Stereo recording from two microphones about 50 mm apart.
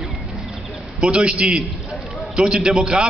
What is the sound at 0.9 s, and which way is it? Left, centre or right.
A man's voice, right.